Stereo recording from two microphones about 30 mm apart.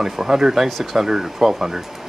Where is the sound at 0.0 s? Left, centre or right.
Centre.